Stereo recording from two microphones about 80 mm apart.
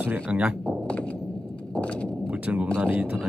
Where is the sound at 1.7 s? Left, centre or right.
Centre.